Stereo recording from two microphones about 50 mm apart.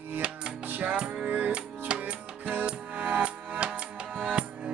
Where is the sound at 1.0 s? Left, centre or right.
Right.